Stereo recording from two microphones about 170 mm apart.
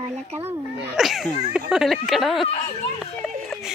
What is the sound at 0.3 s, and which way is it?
Speech, 35° right (ahead or behind).